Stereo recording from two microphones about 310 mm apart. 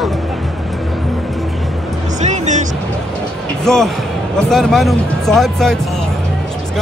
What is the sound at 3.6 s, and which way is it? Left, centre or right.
Speech, centre.